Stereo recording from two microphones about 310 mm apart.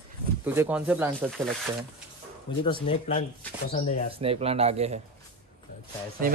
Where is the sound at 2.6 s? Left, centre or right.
Centre.